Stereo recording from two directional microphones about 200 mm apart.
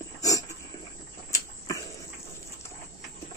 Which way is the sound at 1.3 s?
15° left (ahead or behind).